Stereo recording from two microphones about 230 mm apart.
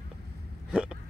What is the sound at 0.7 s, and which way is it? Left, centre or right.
Hiccup, centre.